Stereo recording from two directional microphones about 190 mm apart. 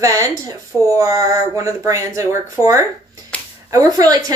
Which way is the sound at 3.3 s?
5° left (ahead or behind).